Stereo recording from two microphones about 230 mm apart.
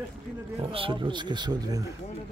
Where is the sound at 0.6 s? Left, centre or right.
Right.